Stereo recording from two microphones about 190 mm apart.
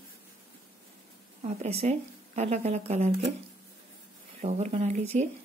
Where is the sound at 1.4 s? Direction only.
35° right (ahead or behind).